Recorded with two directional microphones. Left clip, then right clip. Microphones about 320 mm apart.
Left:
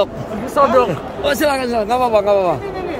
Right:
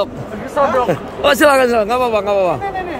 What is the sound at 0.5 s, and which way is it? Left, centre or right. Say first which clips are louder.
Speech: left 2 dB; left.